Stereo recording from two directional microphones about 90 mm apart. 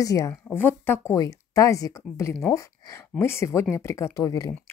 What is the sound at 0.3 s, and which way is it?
Speech, 25° left (ahead or behind).